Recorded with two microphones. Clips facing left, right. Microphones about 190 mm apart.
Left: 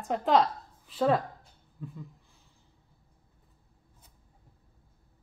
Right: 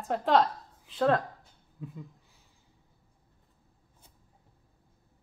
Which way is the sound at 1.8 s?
10° right (ahead or behind).